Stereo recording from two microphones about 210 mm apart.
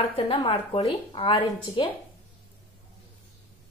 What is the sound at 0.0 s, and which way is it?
A woman's voice, 25° left (ahead or behind).